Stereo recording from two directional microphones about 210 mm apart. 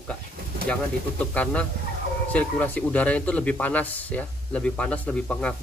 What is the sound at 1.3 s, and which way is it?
Speech, 5° left (ahead or behind).